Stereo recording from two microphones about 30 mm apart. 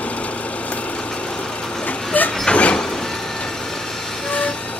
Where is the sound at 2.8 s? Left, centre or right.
Centre.